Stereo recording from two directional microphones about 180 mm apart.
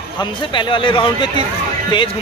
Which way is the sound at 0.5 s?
25° left (ahead or behind).